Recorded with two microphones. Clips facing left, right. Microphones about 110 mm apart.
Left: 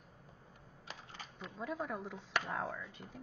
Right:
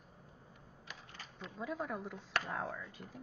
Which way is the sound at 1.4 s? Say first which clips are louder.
Even; centre (ahead or behind).